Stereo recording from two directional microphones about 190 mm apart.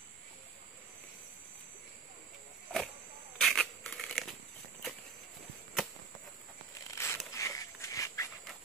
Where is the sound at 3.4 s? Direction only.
Centre (ahead or behind).